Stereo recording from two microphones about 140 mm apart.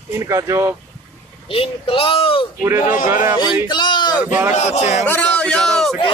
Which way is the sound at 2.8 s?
70° left (ahead or behind).